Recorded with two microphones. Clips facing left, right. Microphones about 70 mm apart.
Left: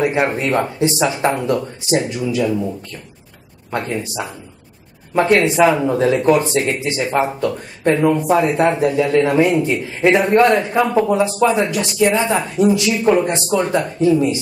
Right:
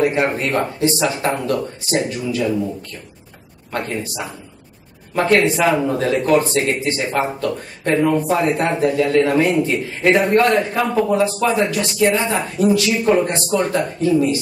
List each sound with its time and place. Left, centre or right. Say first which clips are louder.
0.0 s speech: even; left
3.7 s speech: left 2 dB; centre
5.7 s a man's voice: left 2 dB; centre